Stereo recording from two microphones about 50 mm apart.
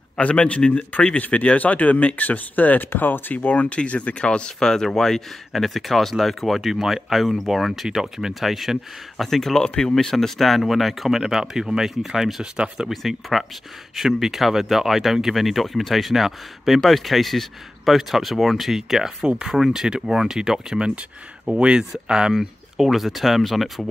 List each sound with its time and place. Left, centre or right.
0.2 s a man's voice: left
10.1 s speech: centre
12.8 s speech: centre